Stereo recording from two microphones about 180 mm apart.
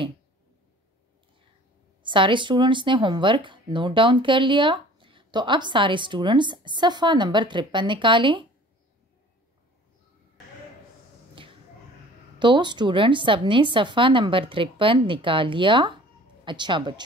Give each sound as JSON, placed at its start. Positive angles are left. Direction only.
{"t": 2.0, "sound": "speech", "side_deg": -25}
{"t": 12.4, "sound": "speech", "side_deg": -25}